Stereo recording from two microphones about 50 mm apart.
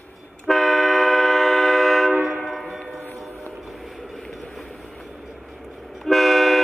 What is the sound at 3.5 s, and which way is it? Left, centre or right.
Vehicle, centre.